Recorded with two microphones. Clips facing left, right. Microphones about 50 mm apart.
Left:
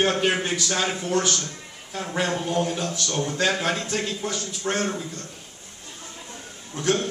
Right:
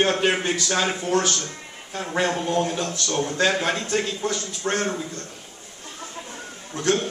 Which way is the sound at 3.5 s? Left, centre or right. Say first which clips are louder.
Right 2 dB; centre.